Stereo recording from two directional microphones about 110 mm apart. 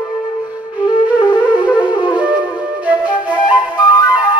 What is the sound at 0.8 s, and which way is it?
Wind instrument, 45° left (ahead or behind).